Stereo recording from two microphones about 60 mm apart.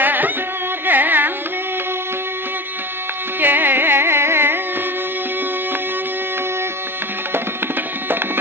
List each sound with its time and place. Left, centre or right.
0.0 s music: right
0.8 s carnatic music: right
3.3 s carnatic music: right
7.3 s tabla: right